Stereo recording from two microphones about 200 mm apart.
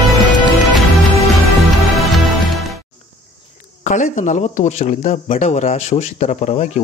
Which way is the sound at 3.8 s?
40° left (ahead or behind).